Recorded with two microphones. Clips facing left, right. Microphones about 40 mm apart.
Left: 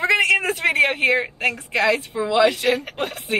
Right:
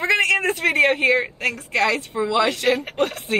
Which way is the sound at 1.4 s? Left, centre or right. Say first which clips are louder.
Left 1 dB; left.